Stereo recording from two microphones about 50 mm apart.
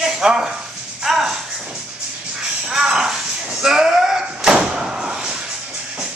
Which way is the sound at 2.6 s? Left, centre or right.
Centre.